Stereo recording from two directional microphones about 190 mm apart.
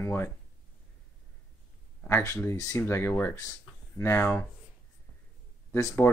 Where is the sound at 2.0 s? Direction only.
15° left (ahead or behind).